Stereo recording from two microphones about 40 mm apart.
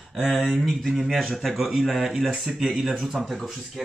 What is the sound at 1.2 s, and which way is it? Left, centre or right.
Speech, centre.